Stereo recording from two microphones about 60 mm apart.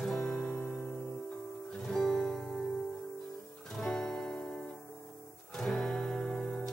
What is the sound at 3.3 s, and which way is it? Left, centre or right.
Guitar, centre.